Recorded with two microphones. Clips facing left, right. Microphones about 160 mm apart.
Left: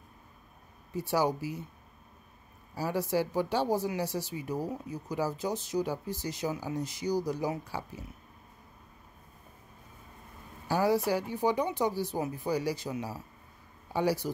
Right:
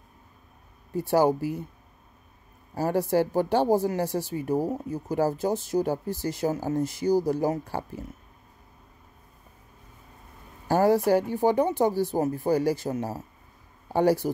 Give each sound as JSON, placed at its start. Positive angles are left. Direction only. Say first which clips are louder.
{"t": 0.9, "sound": "speech", "louder": "right 7 dB", "side_deg": -50}
{"t": 2.7, "sound": "speech", "louder": "right 6 dB", "side_deg": -50}
{"t": 10.7, "sound": "speech", "louder": "right 6 dB", "side_deg": -50}